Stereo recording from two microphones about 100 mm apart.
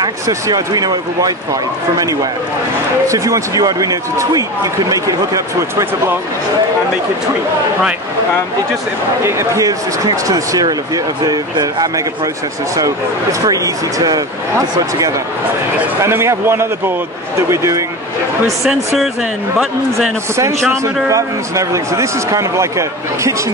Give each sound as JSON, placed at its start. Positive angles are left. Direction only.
{"t": 0.0, "sound": "speech", "side_deg": -35}
{"t": 3.1, "sound": "speech", "side_deg": -35}
{"t": 9.2, "sound": "speech", "side_deg": -30}
{"t": 16.0, "sound": "a man's voice", "side_deg": -25}
{"t": 20.3, "sound": "speech", "side_deg": -30}